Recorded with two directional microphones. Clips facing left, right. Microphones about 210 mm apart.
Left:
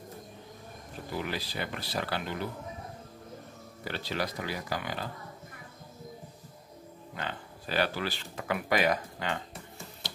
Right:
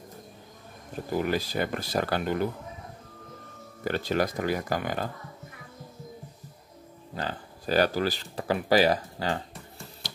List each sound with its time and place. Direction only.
1.1 s speech: 45° right (ahead or behind)
3.8 s speech: 45° right (ahead or behind)
7.2 s speech: 40° right (ahead or behind)